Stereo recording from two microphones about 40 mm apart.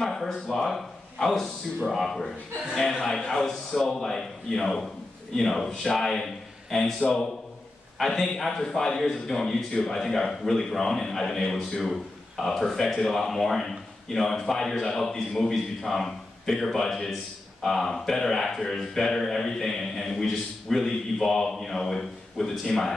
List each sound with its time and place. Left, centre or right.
0.0 s a man's voice: centre
8.4 s a man's voice: centre